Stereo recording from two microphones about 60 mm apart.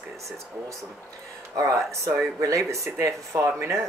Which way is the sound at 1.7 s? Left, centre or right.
Right.